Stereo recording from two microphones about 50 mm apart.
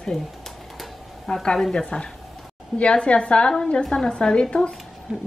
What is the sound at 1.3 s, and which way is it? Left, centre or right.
A woman's voice, centre.